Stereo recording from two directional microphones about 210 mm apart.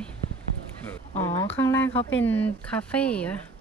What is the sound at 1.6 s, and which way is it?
Speech, 10° left (ahead or behind).